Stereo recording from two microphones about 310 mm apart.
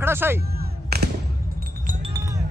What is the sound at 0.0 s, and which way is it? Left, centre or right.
Speech, centre.